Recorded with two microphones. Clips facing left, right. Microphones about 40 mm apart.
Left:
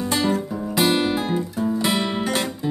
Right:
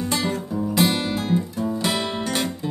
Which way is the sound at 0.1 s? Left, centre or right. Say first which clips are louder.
Left 5 dB; centre.